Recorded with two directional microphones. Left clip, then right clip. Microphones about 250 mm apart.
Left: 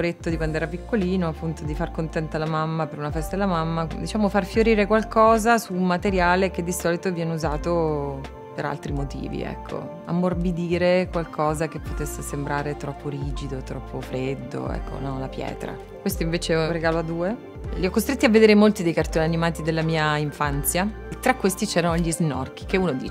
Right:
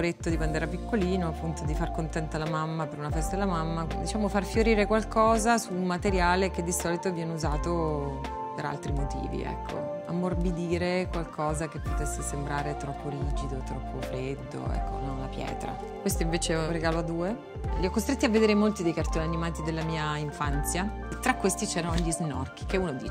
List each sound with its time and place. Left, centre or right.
0.0 s speech: right
2.8 s speech: right
10.0 s speech: right
16.0 s speech: right
17.7 s speech: right
18.3 s speech: right
21.6 s speech: right